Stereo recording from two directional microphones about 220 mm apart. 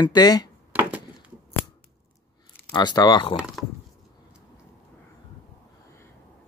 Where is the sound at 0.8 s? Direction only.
10° right (ahead or behind).